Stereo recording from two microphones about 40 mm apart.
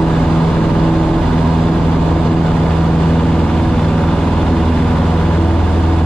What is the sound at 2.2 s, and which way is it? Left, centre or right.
Vehicle, centre.